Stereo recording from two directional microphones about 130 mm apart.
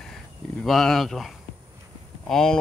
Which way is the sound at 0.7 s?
Centre (ahead or behind).